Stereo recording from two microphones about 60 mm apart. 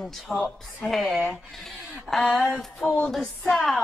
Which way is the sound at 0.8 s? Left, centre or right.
Centre.